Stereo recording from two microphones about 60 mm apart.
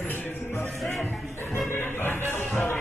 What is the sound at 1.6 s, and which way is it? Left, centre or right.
Music, left.